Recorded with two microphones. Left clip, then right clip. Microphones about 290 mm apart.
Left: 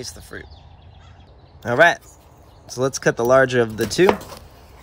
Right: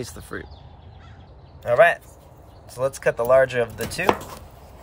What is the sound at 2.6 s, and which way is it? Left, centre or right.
Speech, left.